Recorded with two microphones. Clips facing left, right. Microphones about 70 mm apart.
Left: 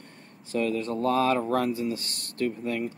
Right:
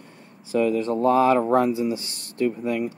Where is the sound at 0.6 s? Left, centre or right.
Right.